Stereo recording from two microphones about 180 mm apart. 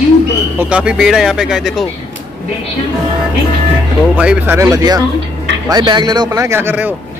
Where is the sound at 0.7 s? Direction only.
5° right (ahead or behind).